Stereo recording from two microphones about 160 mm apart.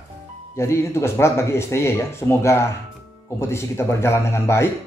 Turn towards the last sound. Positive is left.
turn(degrees=15)  # may be behind; listen again after turning